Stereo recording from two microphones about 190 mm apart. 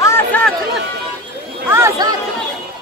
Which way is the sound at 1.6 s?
15° right (ahead or behind).